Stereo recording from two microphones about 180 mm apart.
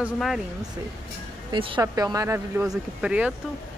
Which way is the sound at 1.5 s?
25° right (ahead or behind).